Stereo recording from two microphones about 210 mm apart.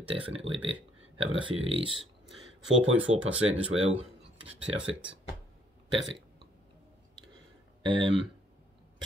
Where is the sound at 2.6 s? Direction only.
65° right (ahead or behind).